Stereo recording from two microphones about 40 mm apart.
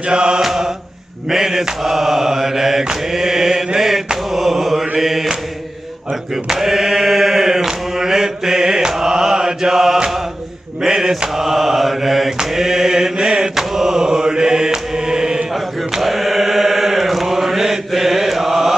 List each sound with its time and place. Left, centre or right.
0.1 s mantra: right
0.4 s mantra: centre
6.4 s chant: centre
10.8 s mantra: centre
15.9 s chant: centre